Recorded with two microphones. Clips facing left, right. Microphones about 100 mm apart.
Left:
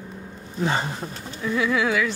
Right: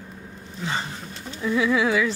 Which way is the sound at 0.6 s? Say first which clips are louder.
Left 5 dB; 50° left (ahead or behind).